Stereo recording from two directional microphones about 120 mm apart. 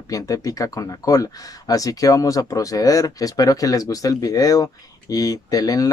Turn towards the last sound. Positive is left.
turn(degrees=30)  # may be behind; listen again after turning